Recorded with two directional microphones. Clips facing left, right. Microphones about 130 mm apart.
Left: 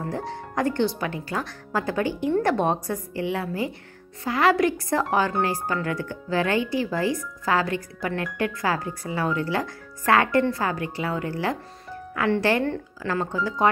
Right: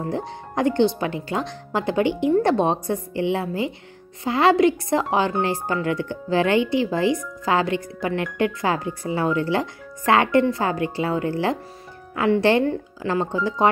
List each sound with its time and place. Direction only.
0.0 s speech: 20° right (ahead or behind)